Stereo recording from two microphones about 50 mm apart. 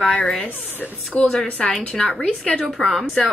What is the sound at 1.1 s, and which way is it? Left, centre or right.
Speech, left.